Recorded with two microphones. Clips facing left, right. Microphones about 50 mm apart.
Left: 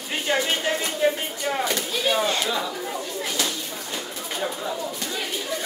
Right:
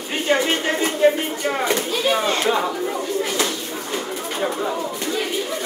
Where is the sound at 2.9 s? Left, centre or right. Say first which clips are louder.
Right 6 dB; right.